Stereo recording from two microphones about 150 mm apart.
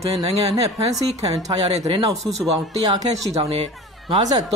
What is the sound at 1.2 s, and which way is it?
Speech, 25° right (ahead or behind).